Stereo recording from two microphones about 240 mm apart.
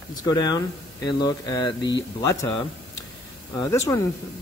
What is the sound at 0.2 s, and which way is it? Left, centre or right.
Speech, centre.